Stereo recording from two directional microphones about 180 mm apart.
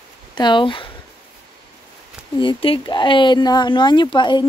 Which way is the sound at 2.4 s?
30° left (ahead or behind).